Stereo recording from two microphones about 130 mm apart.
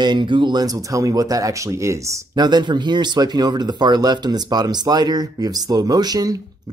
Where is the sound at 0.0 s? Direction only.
35° right (ahead or behind).